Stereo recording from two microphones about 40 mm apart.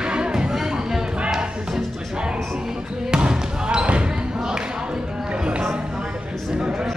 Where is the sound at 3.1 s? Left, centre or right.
Right.